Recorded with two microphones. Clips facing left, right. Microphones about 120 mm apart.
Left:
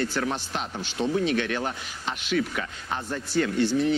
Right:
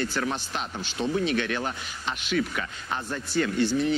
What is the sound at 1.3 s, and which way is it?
Speech, 40° left (ahead or behind).